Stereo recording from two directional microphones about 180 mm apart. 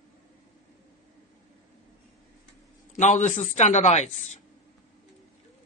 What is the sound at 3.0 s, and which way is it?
Speech, 40° left (ahead or behind).